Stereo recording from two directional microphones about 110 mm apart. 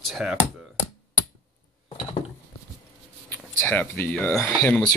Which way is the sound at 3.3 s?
15° left (ahead or behind).